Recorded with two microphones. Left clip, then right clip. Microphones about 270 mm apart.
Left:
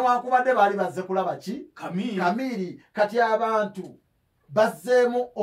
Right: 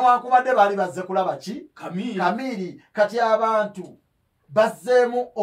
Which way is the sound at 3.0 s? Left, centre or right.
Centre.